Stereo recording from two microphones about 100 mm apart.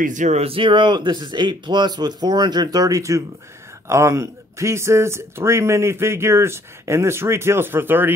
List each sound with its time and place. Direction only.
0.4 s speech: 65° right (ahead or behind); by 8.1 s 20° right (ahead or behind)